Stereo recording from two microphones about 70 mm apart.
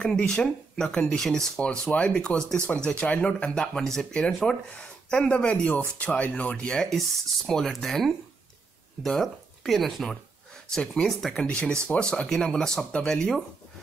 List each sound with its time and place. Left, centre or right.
0.0 s speech: centre
4.6 s speech: centre
11.4 s speech: centre